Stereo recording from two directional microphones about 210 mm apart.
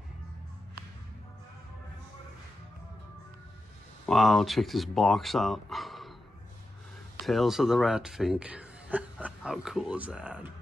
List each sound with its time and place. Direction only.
4.0 s speech: centre (ahead or behind)
7.2 s speech: centre (ahead or behind)